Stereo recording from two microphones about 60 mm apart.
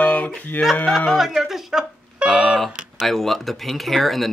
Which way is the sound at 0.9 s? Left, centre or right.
Centre.